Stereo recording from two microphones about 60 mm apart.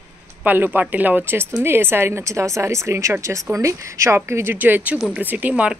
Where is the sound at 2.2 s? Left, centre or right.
Right.